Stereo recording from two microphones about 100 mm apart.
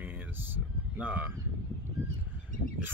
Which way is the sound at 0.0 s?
20° right (ahead or behind).